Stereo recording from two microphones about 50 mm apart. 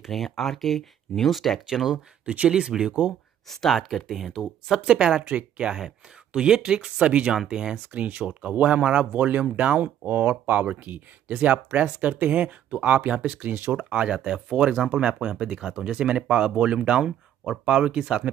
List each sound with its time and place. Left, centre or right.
0.0 s speech: centre
1.7 s speech: centre
2.2 s speech: right
2.5 s speech: centre
3.4 s speech: centre
4.8 s speech: centre
5.2 s speech: right
5.8 s speech: centre
7.9 s speech: right